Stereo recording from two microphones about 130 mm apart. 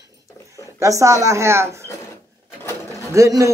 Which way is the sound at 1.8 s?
20° left (ahead or behind).